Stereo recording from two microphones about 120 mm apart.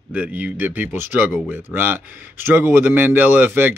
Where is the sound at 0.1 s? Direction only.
10° right (ahead or behind).